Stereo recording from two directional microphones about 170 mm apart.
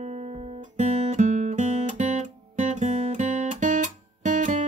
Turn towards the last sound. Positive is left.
turn(degrees=-45)  # may be behind; listen again after turning